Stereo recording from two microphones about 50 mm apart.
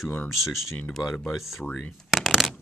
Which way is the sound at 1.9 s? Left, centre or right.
Centre.